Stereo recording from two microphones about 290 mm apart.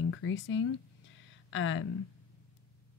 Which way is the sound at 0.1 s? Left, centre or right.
Left.